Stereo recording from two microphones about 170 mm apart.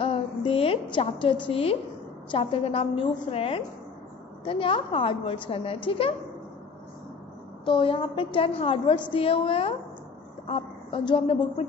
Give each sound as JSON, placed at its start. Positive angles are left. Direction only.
{"t": 0.0, "sound": "a woman's voice", "side_deg": 35}
{"t": 7.6, "sound": "a woman's voice", "side_deg": 30}